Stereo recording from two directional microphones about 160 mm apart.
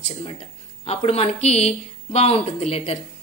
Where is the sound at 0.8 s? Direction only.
40° left (ahead or behind).